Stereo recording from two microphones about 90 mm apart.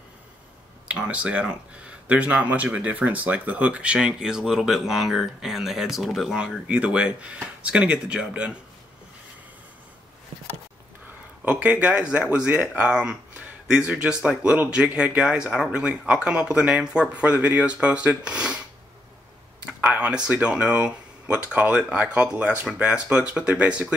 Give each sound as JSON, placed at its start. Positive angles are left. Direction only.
{"t": 0.8, "sound": "speech", "side_deg": -10}
{"t": 11.4, "sound": "speech", "side_deg": -15}
{"t": 19.8, "sound": "speech", "side_deg": -15}